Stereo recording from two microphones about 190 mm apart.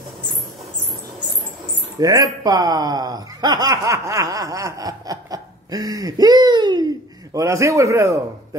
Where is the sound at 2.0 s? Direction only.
20° right (ahead or behind).